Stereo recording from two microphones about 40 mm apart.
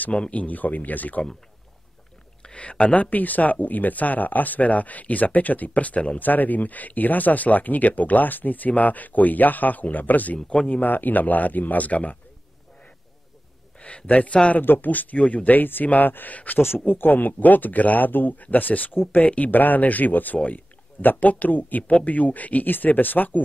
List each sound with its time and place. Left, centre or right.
0.1 s speech: left
2.4 s speech: left
6.1 s speech: left
13.7 s speech: left
14.6 s speech: left
16.5 s speech: left
16.8 s speech: left